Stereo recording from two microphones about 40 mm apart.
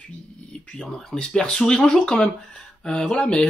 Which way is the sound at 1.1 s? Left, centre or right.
Left.